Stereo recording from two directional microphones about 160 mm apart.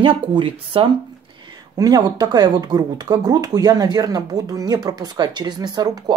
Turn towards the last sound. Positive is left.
turn(degrees=-25)  # may be behind; listen again after turning